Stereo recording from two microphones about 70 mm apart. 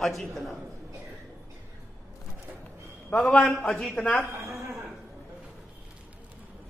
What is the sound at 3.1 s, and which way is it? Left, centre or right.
Speech, centre.